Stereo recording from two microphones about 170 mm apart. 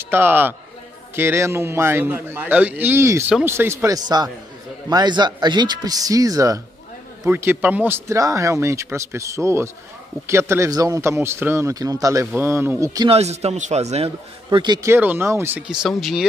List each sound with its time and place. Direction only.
0.0 s a man's voice: 15° right (ahead or behind)
13.1 s a man's voice: 40° right (ahead or behind); by 16.3 s centre (ahead or behind)